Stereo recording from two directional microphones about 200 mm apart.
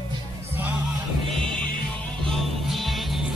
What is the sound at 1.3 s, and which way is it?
Music, 5° left (ahead or behind).